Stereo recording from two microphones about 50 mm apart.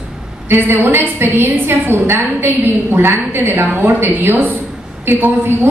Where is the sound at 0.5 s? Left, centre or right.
Right.